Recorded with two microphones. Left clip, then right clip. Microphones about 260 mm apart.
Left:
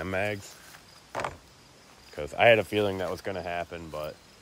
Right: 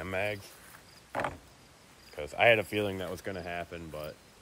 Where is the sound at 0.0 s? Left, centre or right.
Left.